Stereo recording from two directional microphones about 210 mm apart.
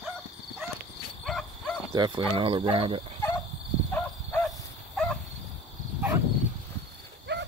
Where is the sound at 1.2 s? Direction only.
Centre (ahead or behind).